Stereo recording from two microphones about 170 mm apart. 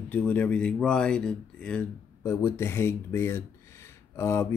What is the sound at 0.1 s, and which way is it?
Speech, 10° left (ahead or behind).